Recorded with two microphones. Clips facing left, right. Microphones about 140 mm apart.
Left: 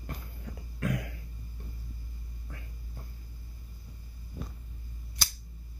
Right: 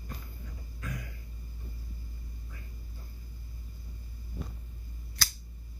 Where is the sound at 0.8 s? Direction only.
70° left (ahead or behind).